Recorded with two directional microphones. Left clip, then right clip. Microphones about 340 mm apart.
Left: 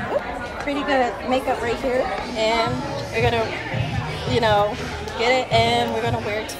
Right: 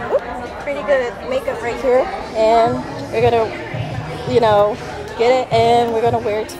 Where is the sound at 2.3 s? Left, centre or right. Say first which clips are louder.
Right 9 dB; centre.